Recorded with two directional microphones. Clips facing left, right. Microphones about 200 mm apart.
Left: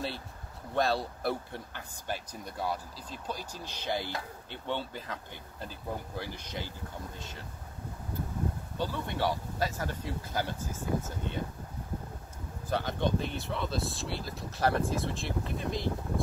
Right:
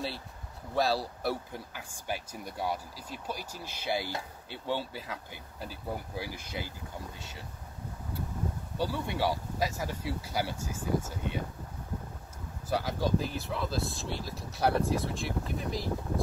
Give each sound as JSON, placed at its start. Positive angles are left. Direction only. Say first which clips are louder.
{"t": 0.7, "sound": "speech", "louder": "even", "side_deg": 0}
{"t": 8.7, "sound": "speech", "louder": "right 3 dB", "side_deg": -10}
{"t": 12.6, "sound": "speech", "louder": "even", "side_deg": -5}